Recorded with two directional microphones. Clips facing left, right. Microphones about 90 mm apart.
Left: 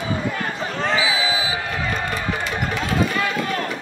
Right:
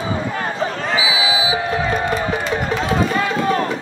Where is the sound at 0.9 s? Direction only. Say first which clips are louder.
Right 4 dB; 5° right (ahead or behind).